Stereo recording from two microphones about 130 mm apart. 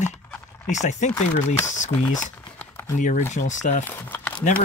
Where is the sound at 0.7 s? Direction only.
65° left (ahead or behind).